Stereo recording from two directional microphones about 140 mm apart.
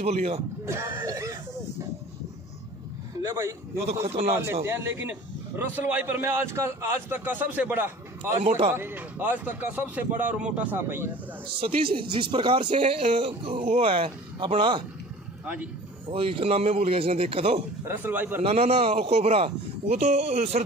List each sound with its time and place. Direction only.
0.0 s a man's voice: 50° right (ahead or behind)
0.7 s speech: 20° right (ahead or behind)
1.0 s a sound: 25° right (ahead or behind)
3.2 s speech: 20° right (ahead or behind)
3.8 s a man's voice: 50° right (ahead or behind)
4.6 s a man's voice: 15° right (ahead or behind)
11.6 s speech: 40° right (ahead or behind)
15.4 s speech: 10° right (ahead or behind)
16.1 s a man's voice: 40° right (ahead or behind)
17.8 s a man's voice: 15° right (ahead or behind)
18.4 s a man's voice: 50° right (ahead or behind)